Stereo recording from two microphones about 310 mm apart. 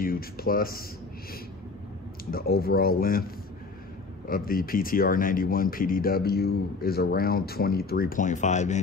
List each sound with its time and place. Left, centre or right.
0.0 s speech: left
2.3 s speech: left
4.3 s speech: left